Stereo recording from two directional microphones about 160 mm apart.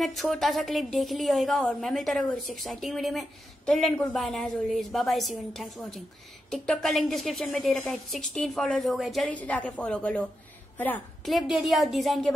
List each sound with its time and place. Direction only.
0.0 s a woman's voice: centre (ahead or behind)
11.2 s a woman's voice: centre (ahead or behind)